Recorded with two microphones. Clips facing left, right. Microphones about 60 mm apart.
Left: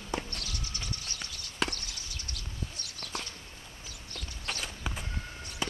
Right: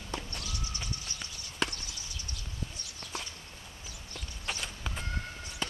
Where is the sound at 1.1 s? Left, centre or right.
Left.